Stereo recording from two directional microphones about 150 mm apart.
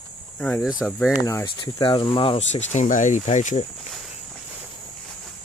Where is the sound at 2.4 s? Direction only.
50° left (ahead or behind).